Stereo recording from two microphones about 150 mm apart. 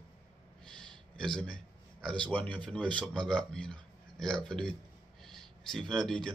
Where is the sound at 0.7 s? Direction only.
5° left (ahead or behind).